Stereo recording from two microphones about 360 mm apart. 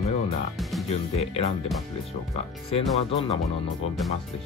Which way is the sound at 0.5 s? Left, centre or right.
Centre.